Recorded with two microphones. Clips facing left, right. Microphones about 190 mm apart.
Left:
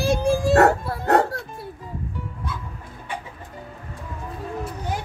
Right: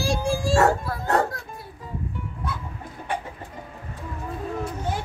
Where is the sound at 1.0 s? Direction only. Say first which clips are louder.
Left 5 dB; 70° left (ahead or behind).